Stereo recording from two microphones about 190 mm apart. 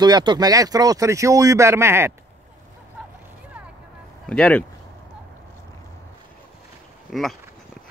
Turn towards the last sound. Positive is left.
turn(degrees=0)  # may be behind; listen again after turning